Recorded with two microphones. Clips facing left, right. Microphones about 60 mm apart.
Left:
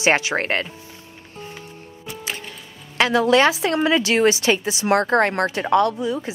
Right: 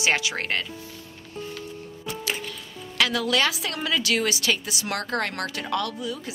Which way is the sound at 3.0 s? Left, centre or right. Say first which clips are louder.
Left 7 dB; left.